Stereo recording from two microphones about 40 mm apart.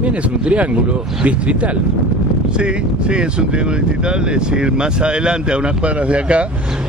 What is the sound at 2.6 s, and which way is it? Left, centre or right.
Speech, right.